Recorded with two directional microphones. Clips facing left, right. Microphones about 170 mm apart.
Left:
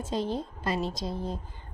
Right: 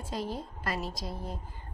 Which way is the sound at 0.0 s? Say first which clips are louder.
Left 5 dB; 25° left (ahead or behind).